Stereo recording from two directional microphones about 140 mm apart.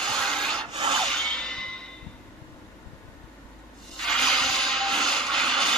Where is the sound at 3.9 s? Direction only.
Centre (ahead or behind).